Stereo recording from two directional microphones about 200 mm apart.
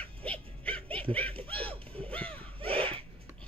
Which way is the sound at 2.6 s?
25° right (ahead or behind).